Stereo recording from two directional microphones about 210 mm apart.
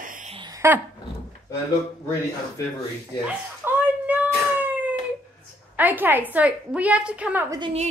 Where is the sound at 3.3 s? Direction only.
10° right (ahead or behind).